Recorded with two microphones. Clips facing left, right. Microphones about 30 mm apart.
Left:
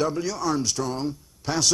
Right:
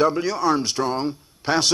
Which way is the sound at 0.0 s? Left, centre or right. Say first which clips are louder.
Right 6 dB; right.